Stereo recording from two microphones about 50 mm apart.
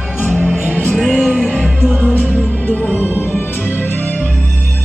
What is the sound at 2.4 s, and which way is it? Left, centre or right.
Music, left.